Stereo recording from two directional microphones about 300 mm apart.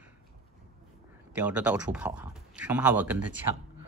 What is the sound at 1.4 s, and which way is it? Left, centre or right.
Speech, centre.